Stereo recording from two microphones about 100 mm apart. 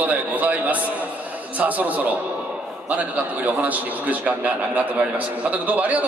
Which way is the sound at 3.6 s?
15° right (ahead or behind).